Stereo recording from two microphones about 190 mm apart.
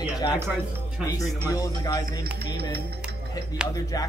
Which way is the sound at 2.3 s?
55° right (ahead or behind).